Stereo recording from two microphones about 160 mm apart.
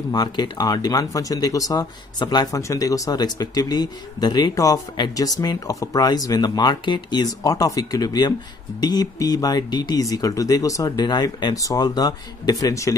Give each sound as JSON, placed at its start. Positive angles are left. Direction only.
{"t": 0.1, "sound": "speech", "side_deg": 25}